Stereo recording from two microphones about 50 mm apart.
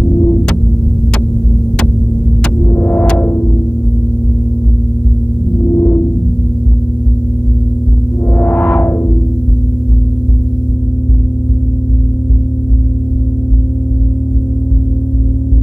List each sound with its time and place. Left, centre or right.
0.1 s throbbing: left
2.7 s music: left
5.7 s music: left
8.4 s music: left